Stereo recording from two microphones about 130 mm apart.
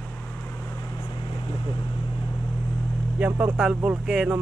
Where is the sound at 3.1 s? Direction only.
10° right (ahead or behind).